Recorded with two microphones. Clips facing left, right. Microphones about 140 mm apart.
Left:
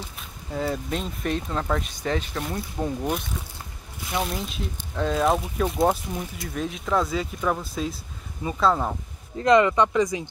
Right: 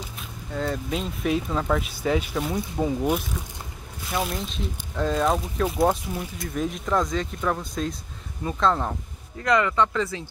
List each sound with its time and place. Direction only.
0.5 s speech: 5° left (ahead or behind)
9.4 s speech: 20° left (ahead or behind)